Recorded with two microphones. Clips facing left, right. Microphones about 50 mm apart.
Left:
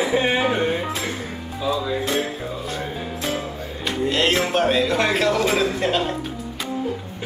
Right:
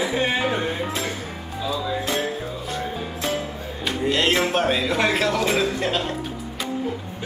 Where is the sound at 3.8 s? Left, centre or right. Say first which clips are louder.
Left 1 dB; centre.